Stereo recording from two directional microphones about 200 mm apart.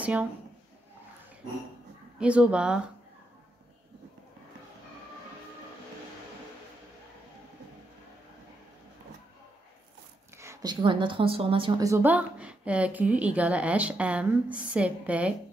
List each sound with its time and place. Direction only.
0.0 s speech: 5° right (ahead or behind)
2.1 s speech: 5° right (ahead or behind)
10.3 s speech: 15° right (ahead or behind)
11.9 s a woman's voice: 10° right (ahead or behind)